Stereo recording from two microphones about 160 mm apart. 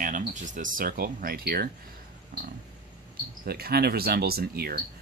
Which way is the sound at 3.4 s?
75° right (ahead or behind).